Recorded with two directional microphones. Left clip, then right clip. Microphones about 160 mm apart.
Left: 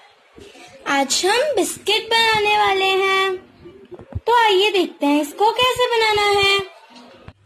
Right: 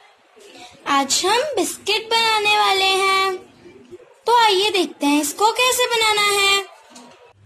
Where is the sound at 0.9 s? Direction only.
25° left (ahead or behind).